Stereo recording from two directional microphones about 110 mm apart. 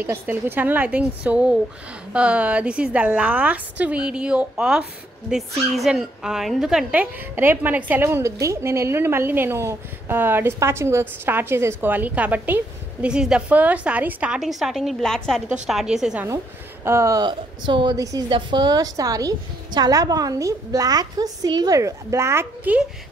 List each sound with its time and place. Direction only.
0.0 s a woman's voice: 20° right (ahead or behind)
16.8 s speech: 25° right (ahead or behind)
17.2 s a woman's voice: 45° right (ahead or behind)
17.9 s a woman's voice: 30° right (ahead or behind)
18.3 s a woman's voice: 40° right (ahead or behind); by 22.8 s 20° right (ahead or behind)